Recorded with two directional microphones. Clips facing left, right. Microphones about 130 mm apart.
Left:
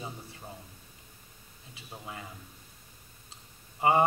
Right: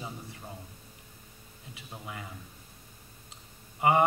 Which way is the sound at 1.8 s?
30° left (ahead or behind).